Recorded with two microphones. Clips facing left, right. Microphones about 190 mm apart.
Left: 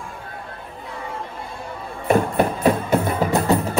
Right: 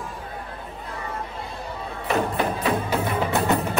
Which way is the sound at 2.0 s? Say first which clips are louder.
Left 5 dB; 50° left (ahead or behind).